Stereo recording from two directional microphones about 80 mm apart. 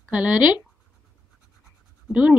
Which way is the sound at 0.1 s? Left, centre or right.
Centre.